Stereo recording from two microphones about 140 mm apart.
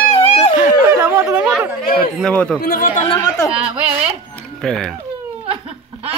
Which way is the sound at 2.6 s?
85° left.